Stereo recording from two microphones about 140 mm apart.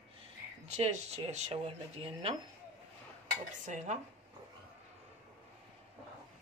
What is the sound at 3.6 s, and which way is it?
Dishes, 60° right (ahead or behind).